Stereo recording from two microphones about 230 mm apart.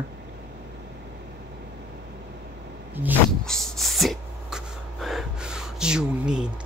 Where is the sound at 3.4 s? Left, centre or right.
Centre.